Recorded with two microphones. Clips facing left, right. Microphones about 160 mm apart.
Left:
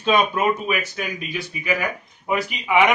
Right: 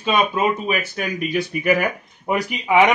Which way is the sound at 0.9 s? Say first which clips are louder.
Right 6 dB; 55° right (ahead or behind).